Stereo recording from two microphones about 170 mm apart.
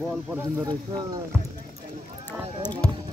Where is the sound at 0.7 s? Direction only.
25° right (ahead or behind).